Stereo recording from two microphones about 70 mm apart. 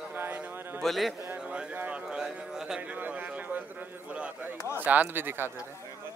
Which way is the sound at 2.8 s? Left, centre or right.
Right.